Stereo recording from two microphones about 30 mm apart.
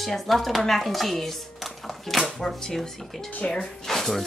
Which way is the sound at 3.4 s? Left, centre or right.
Left.